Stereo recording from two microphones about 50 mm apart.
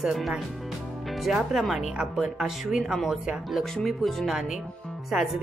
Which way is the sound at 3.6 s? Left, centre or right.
Centre.